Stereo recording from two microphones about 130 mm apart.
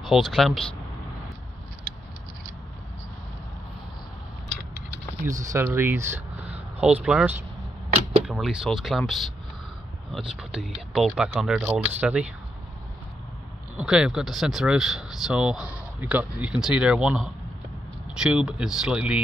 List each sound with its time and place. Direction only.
0.0 s speech: centre (ahead or behind)
5.2 s speech: 25° right (ahead or behind)
13.7 s speech: 5° right (ahead or behind)